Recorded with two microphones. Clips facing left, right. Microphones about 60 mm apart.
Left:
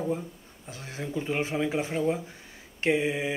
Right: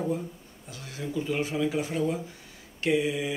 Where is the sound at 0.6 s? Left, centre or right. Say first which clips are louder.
Even; left.